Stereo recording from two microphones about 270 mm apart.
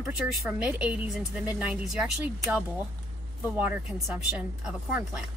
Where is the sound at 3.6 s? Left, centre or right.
Centre.